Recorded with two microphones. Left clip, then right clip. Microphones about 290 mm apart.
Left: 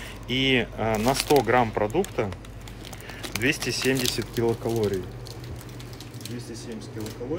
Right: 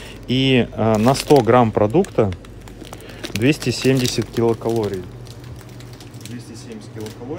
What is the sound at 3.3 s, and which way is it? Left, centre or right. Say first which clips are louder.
Speech: right 6 dB; right.